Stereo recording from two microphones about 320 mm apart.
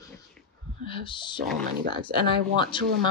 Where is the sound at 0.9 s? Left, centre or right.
Centre.